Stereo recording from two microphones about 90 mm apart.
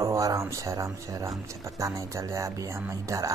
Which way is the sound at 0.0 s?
35° right (ahead or behind).